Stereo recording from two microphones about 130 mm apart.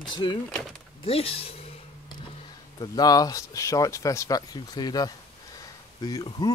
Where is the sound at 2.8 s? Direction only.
30° left (ahead or behind).